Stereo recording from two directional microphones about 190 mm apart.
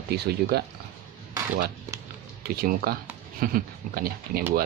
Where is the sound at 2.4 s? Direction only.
55° right (ahead or behind).